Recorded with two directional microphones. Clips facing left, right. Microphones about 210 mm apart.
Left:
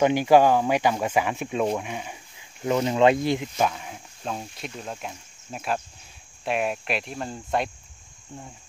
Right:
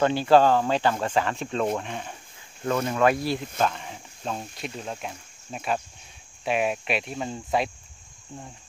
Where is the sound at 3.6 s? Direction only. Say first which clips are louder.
Left 1 dB; 5° left (ahead or behind).